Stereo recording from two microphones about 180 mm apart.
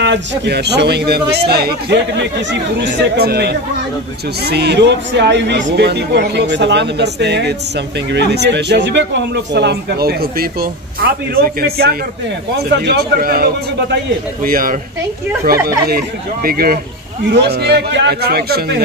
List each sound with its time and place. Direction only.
0.0 s a man's voice: 75° right (ahead or behind); by 16.8 s 55° right (ahead or behind)
17.3 s speech: 65° right (ahead or behind)